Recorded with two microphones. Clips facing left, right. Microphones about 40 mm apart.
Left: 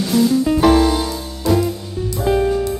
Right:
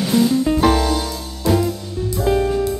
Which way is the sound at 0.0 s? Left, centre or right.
Centre.